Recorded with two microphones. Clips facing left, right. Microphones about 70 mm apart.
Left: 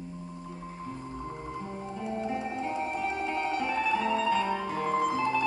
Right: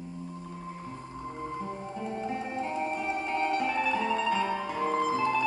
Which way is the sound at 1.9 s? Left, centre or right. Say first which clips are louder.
Left 2 dB; centre.